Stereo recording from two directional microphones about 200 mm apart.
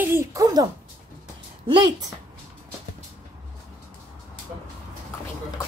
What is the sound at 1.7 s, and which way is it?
Speech, 20° right (ahead or behind).